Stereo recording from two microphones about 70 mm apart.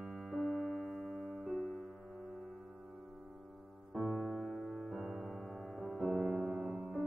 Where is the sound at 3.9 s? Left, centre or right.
Centre.